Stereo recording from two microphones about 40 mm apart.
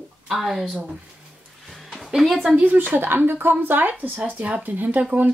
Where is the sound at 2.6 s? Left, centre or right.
Right.